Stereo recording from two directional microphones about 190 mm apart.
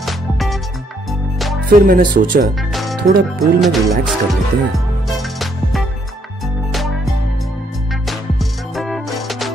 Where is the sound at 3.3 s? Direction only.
Centre (ahead or behind).